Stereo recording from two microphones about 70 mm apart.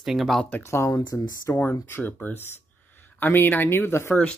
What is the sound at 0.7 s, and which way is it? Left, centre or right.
Speech, left.